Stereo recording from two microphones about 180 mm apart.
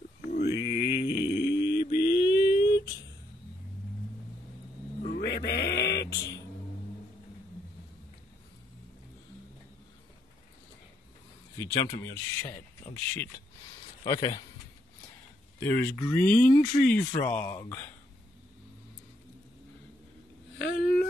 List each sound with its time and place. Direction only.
0.3 s mantra: 65° left (ahead or behind)
2.3 s a sound: 60° left (ahead or behind)
5.0 s music: 55° left (ahead or behind)
11.5 s speech: 15° left (ahead or behind)
15.6 s speech: 15° left (ahead or behind)
20.5 s a sound: 65° left (ahead or behind)